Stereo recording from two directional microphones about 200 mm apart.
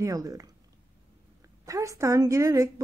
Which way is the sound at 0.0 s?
15° right (ahead or behind).